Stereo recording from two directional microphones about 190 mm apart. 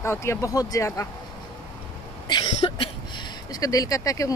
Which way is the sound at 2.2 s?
25° left (ahead or behind).